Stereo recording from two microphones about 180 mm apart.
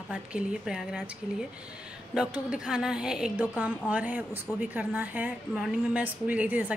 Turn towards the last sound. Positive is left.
turn(degrees=-10)  # may be behind; listen again after turning